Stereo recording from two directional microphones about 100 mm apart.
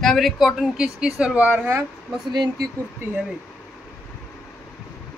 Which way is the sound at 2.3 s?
45° right (ahead or behind).